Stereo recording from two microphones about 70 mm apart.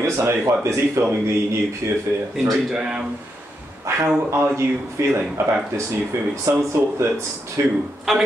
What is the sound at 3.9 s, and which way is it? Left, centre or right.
Speech, right.